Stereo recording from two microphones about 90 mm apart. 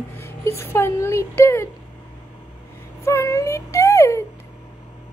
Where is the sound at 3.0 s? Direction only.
30° left (ahead or behind).